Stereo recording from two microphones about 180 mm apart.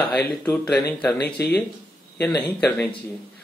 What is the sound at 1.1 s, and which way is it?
Speech, 60° left (ahead or behind).